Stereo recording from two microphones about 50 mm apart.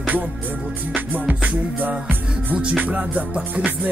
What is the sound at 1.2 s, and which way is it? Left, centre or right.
Music, right.